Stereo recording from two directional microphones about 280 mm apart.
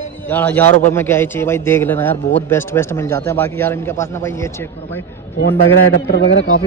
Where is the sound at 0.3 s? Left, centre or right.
Centre.